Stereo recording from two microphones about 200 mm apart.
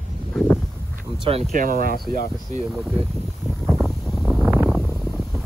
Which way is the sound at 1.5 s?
45° right (ahead or behind).